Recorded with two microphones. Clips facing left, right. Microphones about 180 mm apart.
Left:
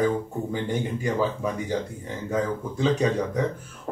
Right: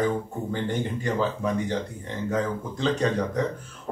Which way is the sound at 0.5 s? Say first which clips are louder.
Even; 10° left (ahead or behind).